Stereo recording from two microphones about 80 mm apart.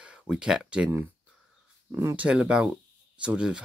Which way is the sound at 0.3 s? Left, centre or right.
Centre.